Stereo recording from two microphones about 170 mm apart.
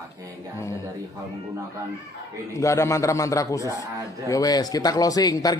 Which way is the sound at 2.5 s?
15° left (ahead or behind).